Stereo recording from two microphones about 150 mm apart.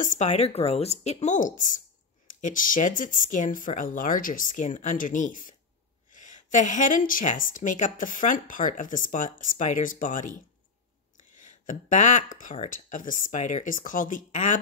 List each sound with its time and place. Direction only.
0.0 s a woman's voice: 55° left (ahead or behind)